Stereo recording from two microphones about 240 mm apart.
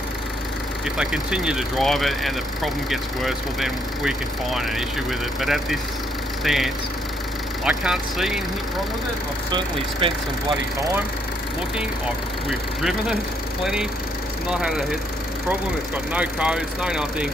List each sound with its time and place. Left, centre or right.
0.9 s speech: centre
5.4 s speech: centre
9.5 s speech: right
12.4 s speech: centre
14.5 s speech: centre
16.1 s speech: centre